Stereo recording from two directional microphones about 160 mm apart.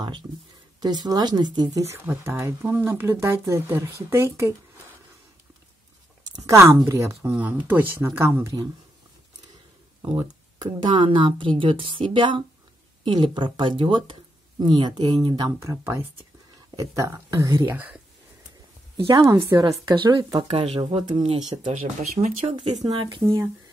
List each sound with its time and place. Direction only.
0.7 s speech: 25° right (ahead or behind)
6.3 s speech: 20° right (ahead or behind)
7.2 s speech: 10° right (ahead or behind)
10.1 s speech: 30° right (ahead or behind)
17.7 s speech: 10° right (ahead or behind)
19.0 s speech: 20° right (ahead or behind)